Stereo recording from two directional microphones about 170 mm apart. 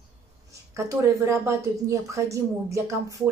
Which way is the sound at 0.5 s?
20° right (ahead or behind).